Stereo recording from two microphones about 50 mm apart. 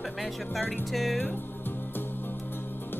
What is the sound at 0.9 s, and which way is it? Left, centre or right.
Music, centre.